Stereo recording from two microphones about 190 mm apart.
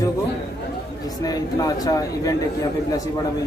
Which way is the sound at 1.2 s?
20° left (ahead or behind).